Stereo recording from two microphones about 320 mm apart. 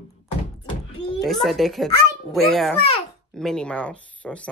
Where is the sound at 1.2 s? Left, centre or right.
Centre.